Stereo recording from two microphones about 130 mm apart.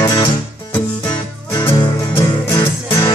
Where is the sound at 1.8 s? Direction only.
25° left (ahead or behind).